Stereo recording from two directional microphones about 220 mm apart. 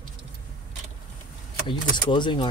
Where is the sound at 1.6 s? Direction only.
20° left (ahead or behind).